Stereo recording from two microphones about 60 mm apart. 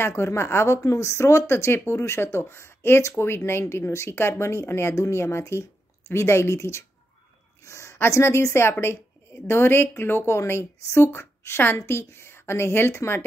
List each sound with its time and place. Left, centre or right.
0.0 s a woman's voice: left